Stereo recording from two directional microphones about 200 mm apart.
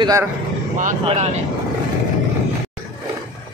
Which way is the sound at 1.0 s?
30° right (ahead or behind).